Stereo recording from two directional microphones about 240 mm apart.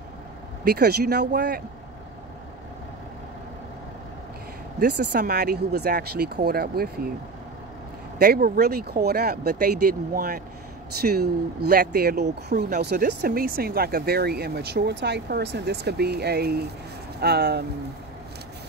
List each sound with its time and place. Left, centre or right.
0.7 s speech: right
4.7 s speech: right
8.2 s speech: right